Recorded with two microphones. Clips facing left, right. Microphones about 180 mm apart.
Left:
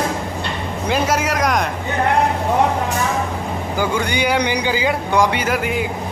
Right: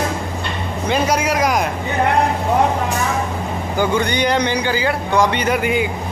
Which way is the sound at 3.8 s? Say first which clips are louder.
Right 3 dB; 10° left (ahead or behind).